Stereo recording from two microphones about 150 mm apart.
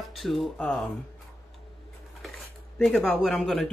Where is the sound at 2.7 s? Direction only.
5° left (ahead or behind).